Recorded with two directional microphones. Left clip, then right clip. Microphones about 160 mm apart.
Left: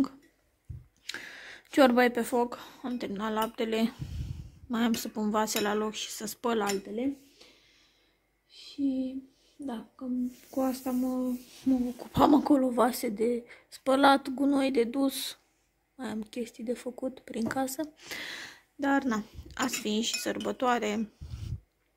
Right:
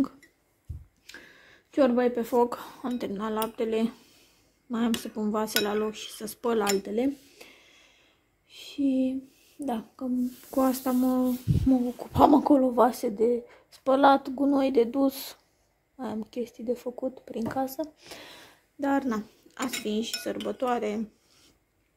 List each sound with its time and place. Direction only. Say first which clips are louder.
1.0 s a sound: left 8 dB; 10° left (ahead or behind)
2.3 s speech: right 5 dB; 20° right (ahead or behind)
3.1 s speech: left 1 dB; centre (ahead or behind)
6.9 s speech: right 5 dB; 35° right (ahead or behind)
8.8 s speech: right 5 dB; 40° right (ahead or behind)
10.5 s speech: right 6 dB; 25° right (ahead or behind)
12.0 s speech: right 3 dB; 5° right (ahead or behind)
18.1 s a sound: left 7 dB; 5° left (ahead or behind)
18.9 s speech: right 1 dB; centre (ahead or behind)